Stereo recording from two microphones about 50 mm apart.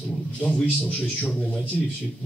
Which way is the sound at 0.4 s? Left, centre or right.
Centre.